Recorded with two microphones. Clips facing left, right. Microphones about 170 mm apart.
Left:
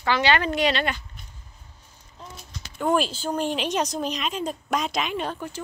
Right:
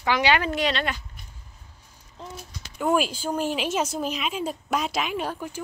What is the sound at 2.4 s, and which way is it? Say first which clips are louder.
Speech: left 1 dB; 5° right (ahead or behind).